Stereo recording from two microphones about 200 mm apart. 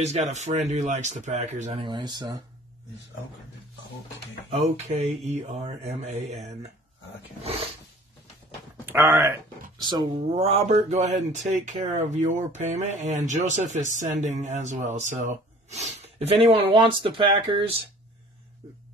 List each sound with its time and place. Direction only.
0.0 s speech: 35° right (ahead or behind)
1.9 s speech: 25° right (ahead or behind)
4.5 s speech: 30° right (ahead or behind)
7.4 s speech: 30° right (ahead or behind)
8.8 s speech: 10° right (ahead or behind)
9.8 s speech: 20° right (ahead or behind)